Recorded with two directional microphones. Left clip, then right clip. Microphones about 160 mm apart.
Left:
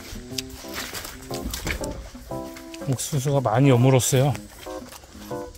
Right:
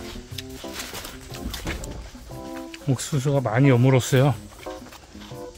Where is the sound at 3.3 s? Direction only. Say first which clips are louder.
Left 1 dB; 5° right (ahead or behind).